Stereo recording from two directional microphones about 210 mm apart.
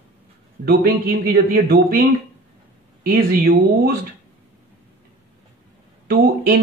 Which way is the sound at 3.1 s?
45° right (ahead or behind).